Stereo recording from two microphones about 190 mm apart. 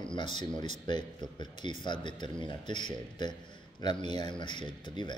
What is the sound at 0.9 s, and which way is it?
Speech, 25° left (ahead or behind).